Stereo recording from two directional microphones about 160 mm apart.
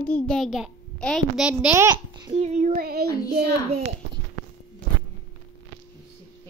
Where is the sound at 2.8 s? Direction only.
70° right (ahead or behind).